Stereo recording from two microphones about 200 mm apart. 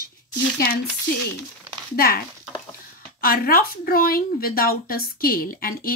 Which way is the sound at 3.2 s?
45° left (ahead or behind).